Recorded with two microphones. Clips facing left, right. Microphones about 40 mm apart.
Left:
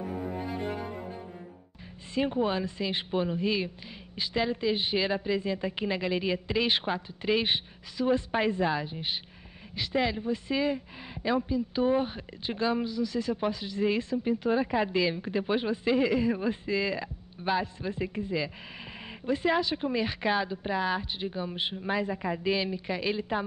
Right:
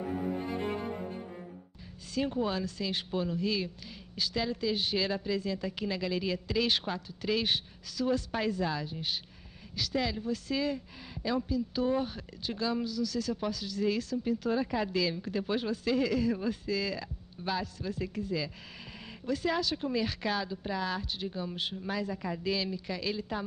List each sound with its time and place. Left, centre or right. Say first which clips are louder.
0.1 s cello: even; centre
2.1 s speech: left 3 dB; left